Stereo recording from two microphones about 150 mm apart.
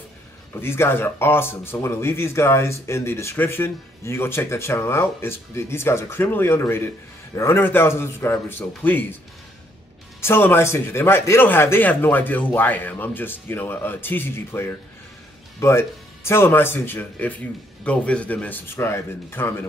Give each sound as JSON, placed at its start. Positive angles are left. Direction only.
{"t": 0.6, "sound": "speech", "side_deg": 15}
{"t": 10.2, "sound": "speech", "side_deg": 15}
{"t": 16.3, "sound": "speech", "side_deg": 15}